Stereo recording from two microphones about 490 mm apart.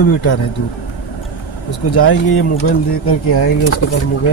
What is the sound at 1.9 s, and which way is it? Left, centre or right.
Speech, left.